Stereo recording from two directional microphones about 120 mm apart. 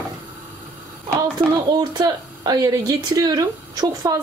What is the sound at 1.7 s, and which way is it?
Speech, 35° right (ahead or behind).